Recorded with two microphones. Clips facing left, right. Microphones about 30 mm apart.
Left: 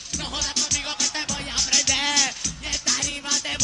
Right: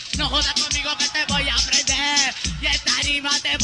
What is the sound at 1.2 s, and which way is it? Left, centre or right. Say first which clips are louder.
Music: right 8 dB; right.